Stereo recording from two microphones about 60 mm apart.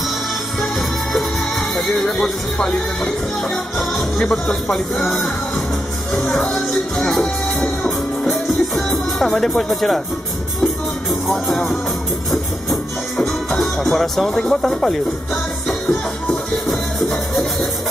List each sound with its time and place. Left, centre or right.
2.0 s speech: centre
4.2 s music: centre
9.6 s speech: centre
10.6 s music: centre
13.2 s speech: centre